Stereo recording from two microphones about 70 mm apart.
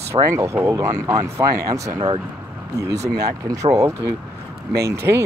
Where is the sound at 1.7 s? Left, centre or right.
Right.